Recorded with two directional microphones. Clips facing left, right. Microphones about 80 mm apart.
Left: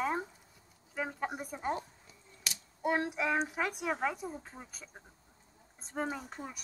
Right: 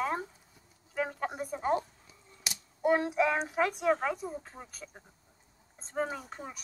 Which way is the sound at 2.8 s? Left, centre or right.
Centre.